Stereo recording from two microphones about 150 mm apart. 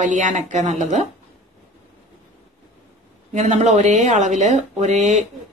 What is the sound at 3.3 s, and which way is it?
A woman's voice, 50° right (ahead or behind).